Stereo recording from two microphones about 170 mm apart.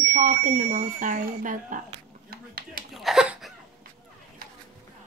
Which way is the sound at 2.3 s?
60° right (ahead or behind).